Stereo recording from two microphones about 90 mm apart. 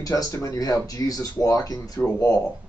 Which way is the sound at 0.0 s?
40° left (ahead or behind).